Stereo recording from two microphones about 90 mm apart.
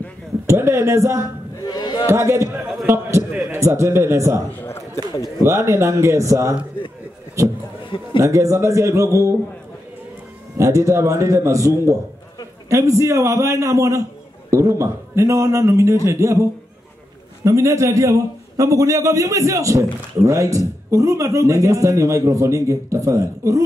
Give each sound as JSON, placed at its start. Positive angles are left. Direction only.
{"t": 0.5, "sound": "speech", "side_deg": -30}
{"t": 1.7, "sound": "speech", "side_deg": 50}
{"t": 2.0, "sound": "a man's voice", "side_deg": -30}
{"t": 3.3, "sound": "a sound", "side_deg": -10}
{"t": 3.5, "sound": "a man's voice", "side_deg": -30}
{"t": 4.6, "sound": "a sound", "side_deg": 30}
{"t": 5.4, "sound": "a man's voice", "side_deg": -30}
{"t": 10.6, "sound": "a man's voice", "side_deg": -35}
{"t": 17.5, "sound": "a man's voice", "side_deg": -35}